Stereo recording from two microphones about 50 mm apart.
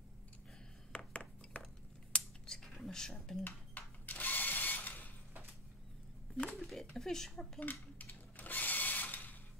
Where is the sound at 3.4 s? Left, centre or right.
Left.